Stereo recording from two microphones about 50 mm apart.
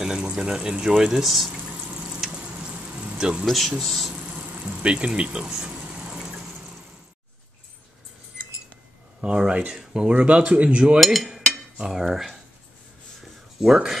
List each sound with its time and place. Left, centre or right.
0.0 s speech: centre
1.2 s speech: centre
1.7 s water: right
2.0 s a sound: centre
2.6 s vehicle: right
3.2 s speech: centre
3.4 s speech: centre
4.1 s a sound: right
6.2 s vehicle: centre
9.2 s speech: centre
10.1 s speech: right
11.0 s speech: centre
11.2 s cutlery: centre
13.2 s writing: centre